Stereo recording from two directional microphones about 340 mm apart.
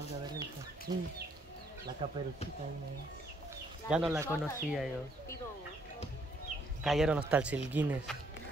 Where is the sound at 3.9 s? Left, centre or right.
Centre.